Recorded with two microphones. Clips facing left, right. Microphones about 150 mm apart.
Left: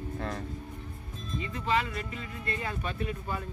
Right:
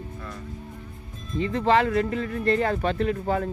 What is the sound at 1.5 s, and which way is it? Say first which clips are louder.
Speech: right 10 dB; 75° right (ahead or behind).